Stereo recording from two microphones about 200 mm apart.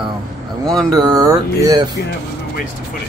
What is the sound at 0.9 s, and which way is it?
Speech, 20° right (ahead or behind).